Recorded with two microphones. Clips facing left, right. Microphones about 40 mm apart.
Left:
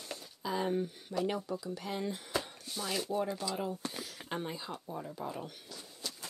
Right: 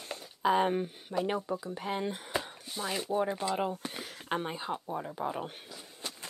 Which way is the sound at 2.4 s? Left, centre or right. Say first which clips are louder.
Right 3 dB; centre.